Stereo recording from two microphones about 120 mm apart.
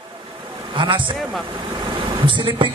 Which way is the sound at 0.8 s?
40° right (ahead or behind).